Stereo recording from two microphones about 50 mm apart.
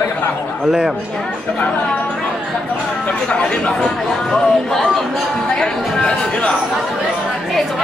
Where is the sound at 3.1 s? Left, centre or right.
Left.